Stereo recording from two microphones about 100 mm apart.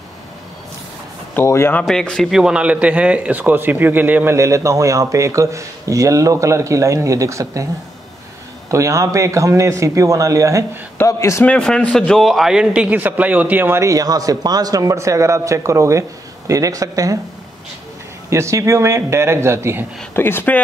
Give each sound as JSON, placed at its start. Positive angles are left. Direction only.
{"t": 1.3, "sound": "speech", "side_deg": 25}
{"t": 1.8, "sound": "speech", "side_deg": 5}
{"t": 2.4, "sound": "speech", "side_deg": -10}
{"t": 4.4, "sound": "speech", "side_deg": -30}
{"t": 8.6, "sound": "speech", "side_deg": -30}
{"t": 11.1, "sound": "speech", "side_deg": 30}
{"t": 11.4, "sound": "speech", "side_deg": 10}
{"t": 18.3, "sound": "a man's voice", "side_deg": -30}
{"t": 20.2, "sound": "speech", "side_deg": 20}